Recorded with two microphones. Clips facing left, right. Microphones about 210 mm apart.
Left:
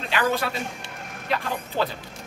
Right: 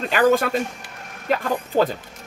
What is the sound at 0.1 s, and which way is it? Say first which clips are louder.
Speech: right 7 dB; 45° right (ahead or behind).